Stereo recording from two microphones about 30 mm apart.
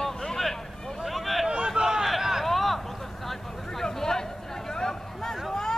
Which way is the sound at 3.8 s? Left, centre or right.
Centre.